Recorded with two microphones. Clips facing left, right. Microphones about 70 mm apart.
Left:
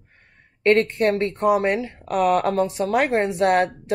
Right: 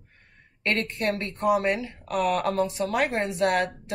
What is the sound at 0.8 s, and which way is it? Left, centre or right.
A woman's voice, left.